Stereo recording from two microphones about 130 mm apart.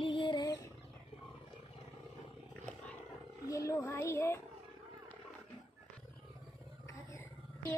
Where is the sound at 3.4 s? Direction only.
25° left (ahead or behind).